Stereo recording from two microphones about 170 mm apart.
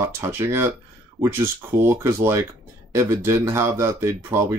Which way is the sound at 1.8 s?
15° right (ahead or behind).